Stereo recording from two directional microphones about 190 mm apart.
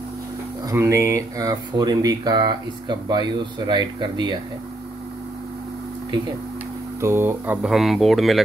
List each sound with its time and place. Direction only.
0.7 s speech: 15° right (ahead or behind)
7.0 s speech: 15° right (ahead or behind)